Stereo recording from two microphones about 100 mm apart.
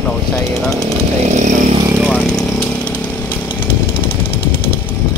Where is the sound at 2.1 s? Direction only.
10° left (ahead or behind).